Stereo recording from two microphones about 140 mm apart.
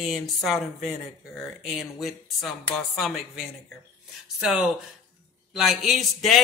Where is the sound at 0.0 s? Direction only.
Centre (ahead or behind).